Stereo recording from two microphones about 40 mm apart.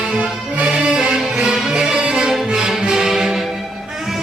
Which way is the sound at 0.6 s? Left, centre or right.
Right.